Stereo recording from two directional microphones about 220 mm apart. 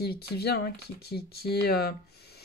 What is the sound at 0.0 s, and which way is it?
Speech, 45° left (ahead or behind).